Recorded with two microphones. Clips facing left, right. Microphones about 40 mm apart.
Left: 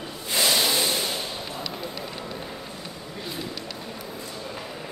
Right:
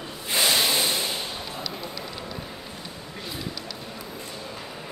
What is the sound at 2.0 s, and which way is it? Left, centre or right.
Vehicle, left.